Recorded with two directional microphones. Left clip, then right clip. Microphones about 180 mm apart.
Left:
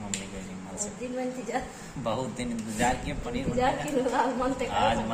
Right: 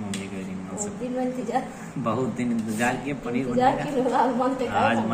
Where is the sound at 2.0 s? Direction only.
15° left (ahead or behind).